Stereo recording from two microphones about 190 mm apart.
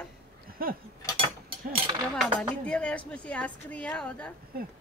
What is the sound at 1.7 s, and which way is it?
Speech, 25° right (ahead or behind).